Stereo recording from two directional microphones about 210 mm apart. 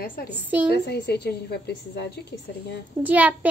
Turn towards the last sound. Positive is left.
turn(degrees=-5)  # may be behind; listen again after turning